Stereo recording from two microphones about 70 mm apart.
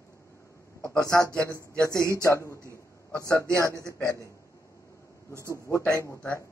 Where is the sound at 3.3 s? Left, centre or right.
Right.